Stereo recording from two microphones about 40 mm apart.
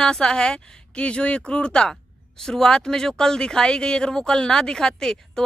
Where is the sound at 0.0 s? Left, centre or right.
Centre.